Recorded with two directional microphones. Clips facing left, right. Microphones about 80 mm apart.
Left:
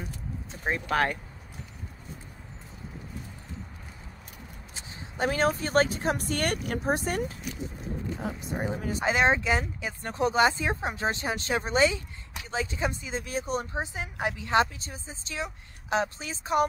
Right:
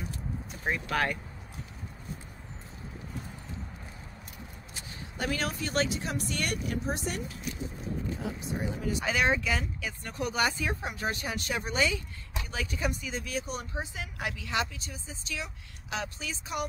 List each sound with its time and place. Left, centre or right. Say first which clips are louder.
0.5 s speech: left 3 dB; left
4.7 s speech: left 5 dB; left
8.5 s speech: left 1 dB; left